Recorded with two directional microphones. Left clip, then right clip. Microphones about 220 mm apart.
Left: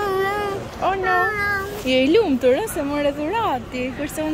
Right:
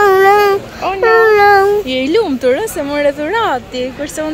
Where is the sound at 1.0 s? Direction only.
25° right (ahead or behind).